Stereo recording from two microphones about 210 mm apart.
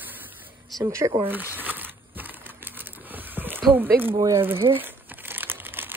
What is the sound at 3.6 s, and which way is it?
Speech, 10° right (ahead or behind).